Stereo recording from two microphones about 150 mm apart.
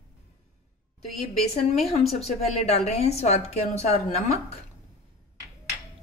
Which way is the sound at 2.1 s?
45° left (ahead or behind).